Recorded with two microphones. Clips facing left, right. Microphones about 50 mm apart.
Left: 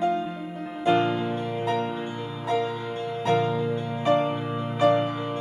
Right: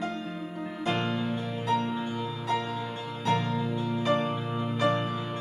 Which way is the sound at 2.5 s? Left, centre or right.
Centre.